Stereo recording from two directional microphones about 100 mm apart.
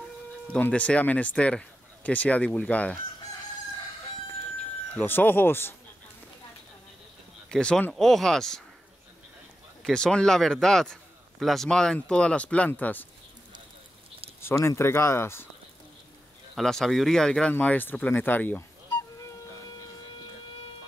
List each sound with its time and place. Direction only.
0.5 s a man's voice: 15° left (ahead or behind)
4.9 s speech: 20° left (ahead or behind)
7.5 s a man's voice: 5° left (ahead or behind)
9.8 s a man's voice: 5° left (ahead or behind)
14.4 s speech: 30° left (ahead or behind)
16.5 s a man's voice: centre (ahead or behind); by 18.6 s 20° left (ahead or behind)